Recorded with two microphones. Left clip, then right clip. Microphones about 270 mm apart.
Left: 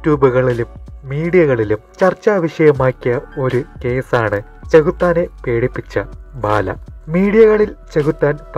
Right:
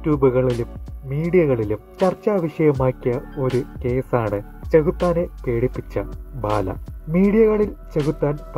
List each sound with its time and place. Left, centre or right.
0.0 s speech: centre